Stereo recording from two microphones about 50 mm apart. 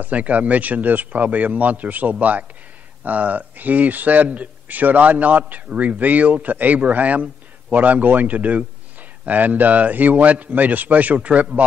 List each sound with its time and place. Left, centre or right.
0.0 s speech: right